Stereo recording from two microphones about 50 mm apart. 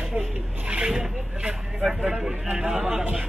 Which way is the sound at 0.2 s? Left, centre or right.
Right.